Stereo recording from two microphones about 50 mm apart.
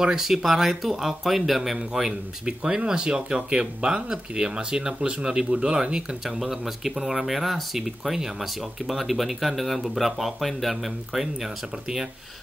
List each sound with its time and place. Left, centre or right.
0.0 s speech: centre
1.8 s speech: centre